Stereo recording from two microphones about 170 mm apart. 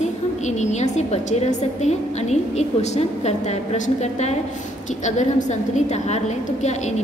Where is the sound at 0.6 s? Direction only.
40° left (ahead or behind).